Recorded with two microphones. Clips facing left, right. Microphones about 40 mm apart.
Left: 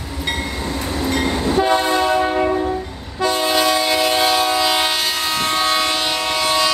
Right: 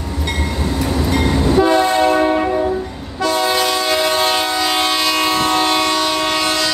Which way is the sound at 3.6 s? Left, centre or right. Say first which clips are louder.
Even; centre.